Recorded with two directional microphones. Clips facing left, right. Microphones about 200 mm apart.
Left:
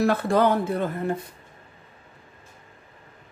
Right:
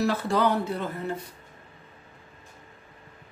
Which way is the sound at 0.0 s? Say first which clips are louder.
Left 4 dB; 55° left (ahead or behind).